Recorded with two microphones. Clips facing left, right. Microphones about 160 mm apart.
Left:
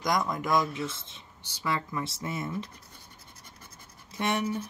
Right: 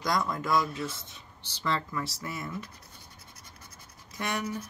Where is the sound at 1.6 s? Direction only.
15° left (ahead or behind).